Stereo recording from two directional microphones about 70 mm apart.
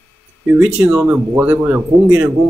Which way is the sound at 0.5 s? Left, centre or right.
Right.